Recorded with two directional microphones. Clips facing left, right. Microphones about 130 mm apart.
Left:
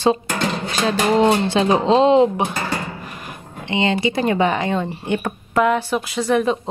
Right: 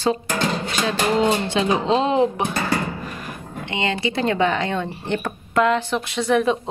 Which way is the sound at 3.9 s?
15° left (ahead or behind).